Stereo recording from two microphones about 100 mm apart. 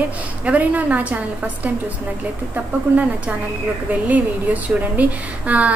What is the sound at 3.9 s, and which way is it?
A woman's voice, 15° right (ahead or behind).